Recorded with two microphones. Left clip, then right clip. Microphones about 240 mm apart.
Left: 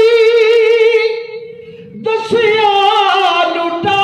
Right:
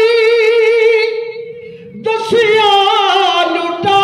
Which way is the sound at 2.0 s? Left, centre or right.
Right.